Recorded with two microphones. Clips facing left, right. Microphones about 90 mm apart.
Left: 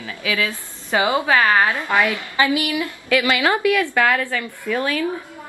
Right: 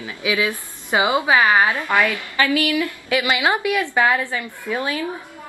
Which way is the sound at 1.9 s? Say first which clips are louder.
Left 1 dB; 20° left (ahead or behind).